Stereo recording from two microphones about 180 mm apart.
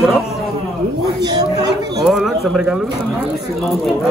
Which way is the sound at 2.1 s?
5° right (ahead or behind).